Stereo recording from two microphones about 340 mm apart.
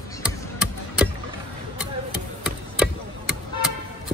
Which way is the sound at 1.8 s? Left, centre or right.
Centre.